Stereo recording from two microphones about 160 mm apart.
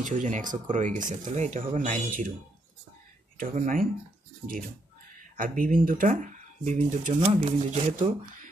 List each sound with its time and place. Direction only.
0.0 s speech: 50° right (ahead or behind)
3.3 s speech: 50° right (ahead or behind)
5.3 s speech: 60° right (ahead or behind)